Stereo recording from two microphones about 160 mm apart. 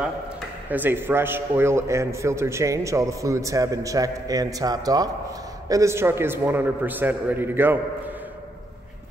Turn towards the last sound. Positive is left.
turn(degrees=-15)  # may be behind; listen again after turning